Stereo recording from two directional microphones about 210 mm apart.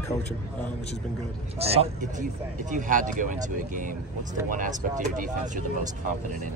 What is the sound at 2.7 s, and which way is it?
Speech, 40° right (ahead or behind).